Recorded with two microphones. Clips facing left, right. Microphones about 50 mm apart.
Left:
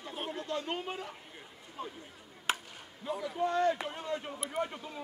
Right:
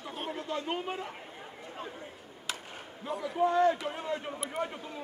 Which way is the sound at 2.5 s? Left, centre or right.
Left.